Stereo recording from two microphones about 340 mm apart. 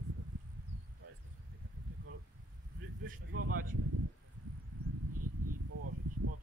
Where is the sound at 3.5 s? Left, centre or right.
Right.